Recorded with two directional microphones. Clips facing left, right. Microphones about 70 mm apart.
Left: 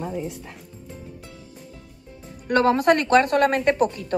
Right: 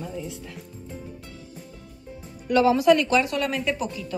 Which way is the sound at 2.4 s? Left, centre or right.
Left.